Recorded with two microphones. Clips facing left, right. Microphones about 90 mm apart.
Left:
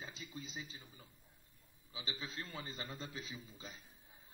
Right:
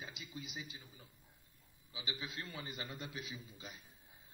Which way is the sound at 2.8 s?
30° left (ahead or behind).